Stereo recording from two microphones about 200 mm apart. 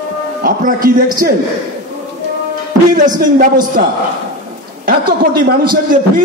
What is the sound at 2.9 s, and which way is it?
Speech, 40° right (ahead or behind).